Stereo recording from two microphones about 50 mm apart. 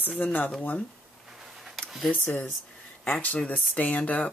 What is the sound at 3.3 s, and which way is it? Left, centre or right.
Speech, left.